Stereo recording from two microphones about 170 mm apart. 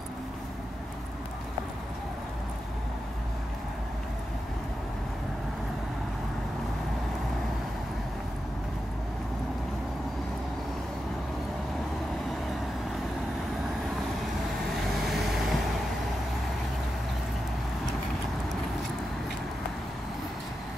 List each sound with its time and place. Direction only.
15.0 s vehicle: centre (ahead or behind)